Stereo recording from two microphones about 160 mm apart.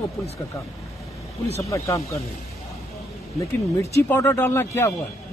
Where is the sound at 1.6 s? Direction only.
20° left (ahead or behind).